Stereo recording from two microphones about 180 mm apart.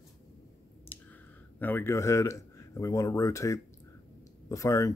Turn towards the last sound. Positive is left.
turn(degrees=20)  # may be behind; listen again after turning